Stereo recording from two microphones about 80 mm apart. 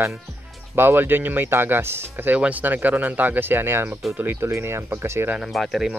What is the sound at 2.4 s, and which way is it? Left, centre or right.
Speech, centre.